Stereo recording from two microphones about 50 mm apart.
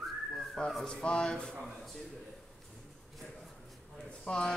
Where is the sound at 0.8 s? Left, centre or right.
Centre.